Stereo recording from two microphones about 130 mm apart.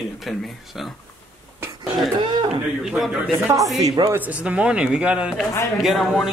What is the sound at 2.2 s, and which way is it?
Speech, 35° right (ahead or behind).